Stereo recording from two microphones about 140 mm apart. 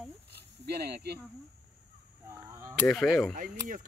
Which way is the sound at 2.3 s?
20° right (ahead or behind).